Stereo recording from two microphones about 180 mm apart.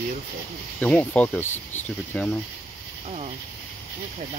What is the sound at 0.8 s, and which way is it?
Speech, 10° left (ahead or behind).